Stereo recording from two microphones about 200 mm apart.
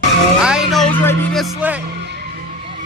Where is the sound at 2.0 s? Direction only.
60° right (ahead or behind).